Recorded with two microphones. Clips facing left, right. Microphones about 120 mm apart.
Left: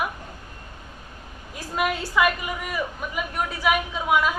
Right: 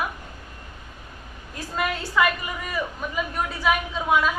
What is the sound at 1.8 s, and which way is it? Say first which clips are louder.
Speech: left 1 dB; 10° left (ahead or behind).